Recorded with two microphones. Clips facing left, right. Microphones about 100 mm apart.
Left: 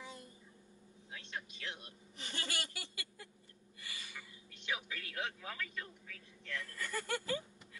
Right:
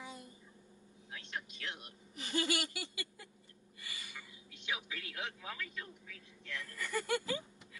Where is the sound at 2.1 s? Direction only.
10° right (ahead or behind).